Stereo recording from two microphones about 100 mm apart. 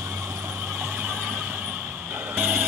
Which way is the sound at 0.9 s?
20° right (ahead or behind).